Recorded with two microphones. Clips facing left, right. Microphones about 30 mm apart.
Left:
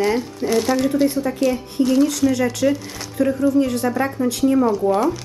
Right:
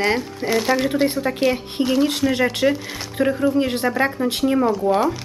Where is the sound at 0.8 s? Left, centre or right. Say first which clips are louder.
Left 1 dB; right.